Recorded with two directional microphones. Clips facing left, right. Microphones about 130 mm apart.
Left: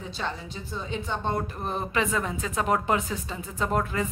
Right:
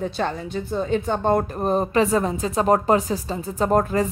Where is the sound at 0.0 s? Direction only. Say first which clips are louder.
Right 8 dB; 55° right (ahead or behind).